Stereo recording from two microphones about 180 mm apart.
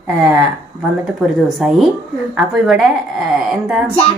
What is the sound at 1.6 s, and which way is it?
Speech, centre (ahead or behind).